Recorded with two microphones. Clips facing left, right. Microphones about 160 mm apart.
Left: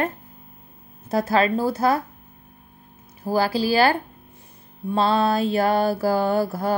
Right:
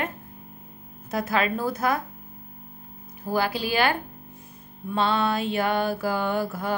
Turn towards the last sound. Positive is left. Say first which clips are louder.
# left 5 dB
turn(degrees=35)  # may be behind; listen again after turning